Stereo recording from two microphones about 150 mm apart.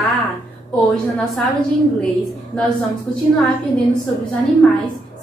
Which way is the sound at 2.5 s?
5° left (ahead or behind).